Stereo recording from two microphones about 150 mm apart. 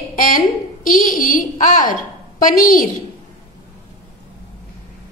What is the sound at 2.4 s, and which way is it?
Speech, 70° left (ahead or behind).